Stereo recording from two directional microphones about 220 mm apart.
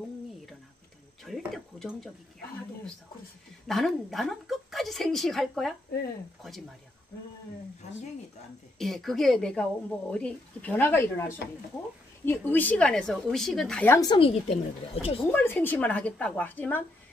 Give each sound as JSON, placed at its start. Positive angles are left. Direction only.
{"t": 1.2, "sound": "a sound", "side_deg": 0}
{"t": 3.6, "sound": "a woman's voice", "side_deg": 0}
{"t": 7.8, "sound": "speech", "side_deg": 30}
{"t": 8.7, "sound": "a woman's voice", "side_deg": 0}
{"t": 15.3, "sound": "a woman's voice", "side_deg": 10}